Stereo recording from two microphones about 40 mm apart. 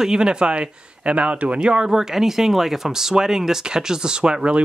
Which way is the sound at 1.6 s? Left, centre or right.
Centre.